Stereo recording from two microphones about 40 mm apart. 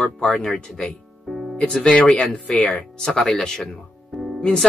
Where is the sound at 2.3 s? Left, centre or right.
Left.